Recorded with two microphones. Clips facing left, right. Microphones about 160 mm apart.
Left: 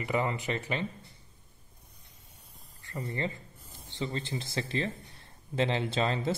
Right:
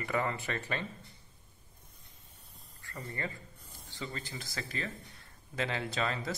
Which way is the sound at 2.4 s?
Centre (ahead or behind).